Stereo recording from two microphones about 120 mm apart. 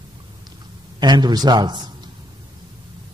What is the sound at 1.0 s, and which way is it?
Speech, 35° right (ahead or behind).